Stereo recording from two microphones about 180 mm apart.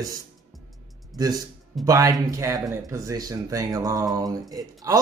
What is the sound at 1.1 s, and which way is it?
A man's voice, 20° right (ahead or behind).